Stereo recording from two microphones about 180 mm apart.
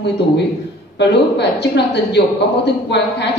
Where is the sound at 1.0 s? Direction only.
70° left (ahead or behind).